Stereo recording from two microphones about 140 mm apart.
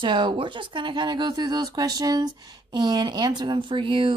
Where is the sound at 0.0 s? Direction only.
35° right (ahead or behind).